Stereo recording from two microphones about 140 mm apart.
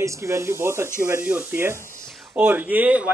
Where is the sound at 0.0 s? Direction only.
20° right (ahead or behind).